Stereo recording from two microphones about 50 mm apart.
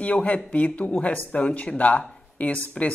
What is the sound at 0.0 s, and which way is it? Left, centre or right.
Speech, left.